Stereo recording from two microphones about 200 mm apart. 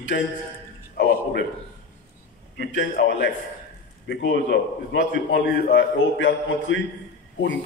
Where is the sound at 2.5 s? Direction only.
55° left (ahead or behind).